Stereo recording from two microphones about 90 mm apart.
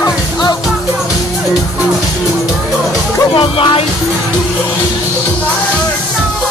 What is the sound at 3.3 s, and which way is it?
Music, 70° left (ahead or behind).